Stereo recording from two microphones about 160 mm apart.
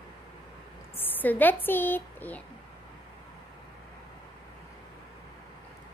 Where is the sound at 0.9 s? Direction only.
10° left (ahead or behind).